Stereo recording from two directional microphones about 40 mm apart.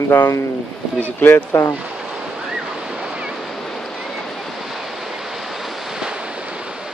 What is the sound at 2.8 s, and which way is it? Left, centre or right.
Waves, centre.